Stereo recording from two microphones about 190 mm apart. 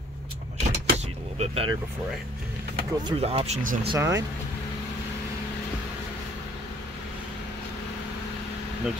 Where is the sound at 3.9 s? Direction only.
15° right (ahead or behind).